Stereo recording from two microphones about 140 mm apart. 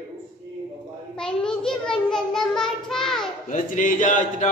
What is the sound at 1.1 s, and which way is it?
Child singing, 5° left (ahead or behind).